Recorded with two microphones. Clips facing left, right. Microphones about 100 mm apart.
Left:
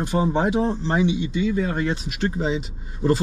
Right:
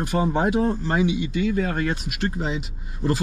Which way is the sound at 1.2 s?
55° right (ahead or behind).